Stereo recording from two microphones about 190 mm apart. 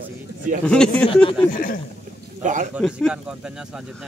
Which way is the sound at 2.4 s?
40° right (ahead or behind).